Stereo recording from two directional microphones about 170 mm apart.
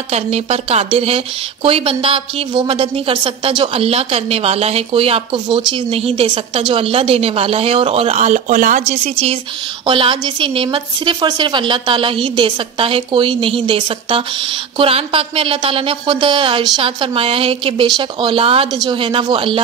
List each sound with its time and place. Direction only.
0.1 s a woman's voice: 35° right (ahead or behind)